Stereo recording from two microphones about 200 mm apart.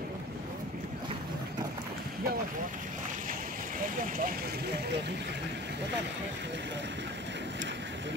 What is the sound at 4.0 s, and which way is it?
Speech, 45° right (ahead or behind).